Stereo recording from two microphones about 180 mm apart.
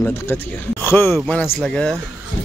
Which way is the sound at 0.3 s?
10° left (ahead or behind).